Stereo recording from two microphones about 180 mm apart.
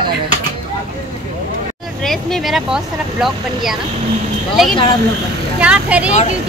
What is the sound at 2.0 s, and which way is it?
A woman's voice, centre (ahead or behind).